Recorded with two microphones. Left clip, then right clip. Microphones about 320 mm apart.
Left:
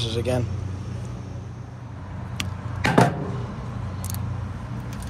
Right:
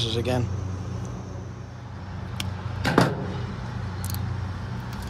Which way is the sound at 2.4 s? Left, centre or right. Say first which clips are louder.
Left 4 dB; left.